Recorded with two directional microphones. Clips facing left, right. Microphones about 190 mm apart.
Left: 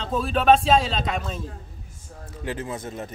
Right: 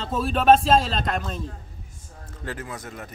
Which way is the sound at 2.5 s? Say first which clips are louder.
Left 4 dB; 25° left (ahead or behind).